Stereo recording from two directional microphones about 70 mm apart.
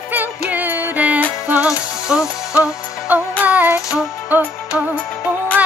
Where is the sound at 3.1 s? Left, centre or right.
Right.